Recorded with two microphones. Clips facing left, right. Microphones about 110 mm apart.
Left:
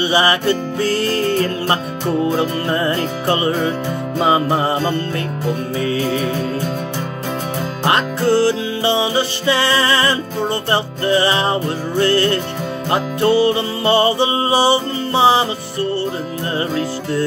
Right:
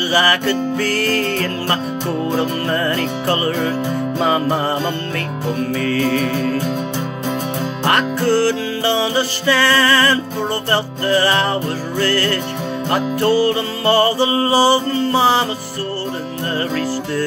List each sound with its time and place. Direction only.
0.1 s music: 20° left (ahead or behind)
7.8 s music: 20° left (ahead or behind)